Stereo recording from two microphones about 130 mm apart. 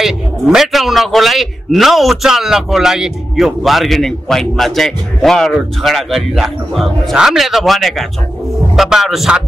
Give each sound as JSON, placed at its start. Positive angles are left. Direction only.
{"t": 0.0, "sound": "a man's voice", "side_deg": -5}